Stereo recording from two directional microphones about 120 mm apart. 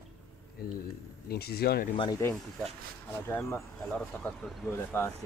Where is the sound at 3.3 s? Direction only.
20° left (ahead or behind).